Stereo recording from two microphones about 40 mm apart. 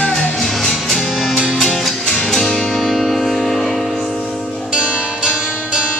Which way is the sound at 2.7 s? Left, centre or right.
Centre.